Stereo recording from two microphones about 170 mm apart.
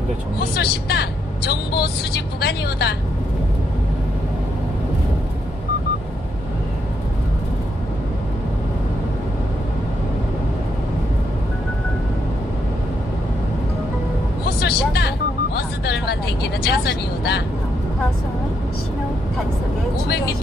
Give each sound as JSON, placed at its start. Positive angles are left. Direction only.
{"t": 0.4, "sound": "a woman's voice", "side_deg": 70}
{"t": 14.6, "sound": "vehicle", "side_deg": 70}
{"t": 16.6, "sound": "a woman's voice", "side_deg": 70}